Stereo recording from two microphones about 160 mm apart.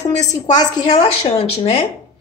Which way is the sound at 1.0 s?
40° left (ahead or behind).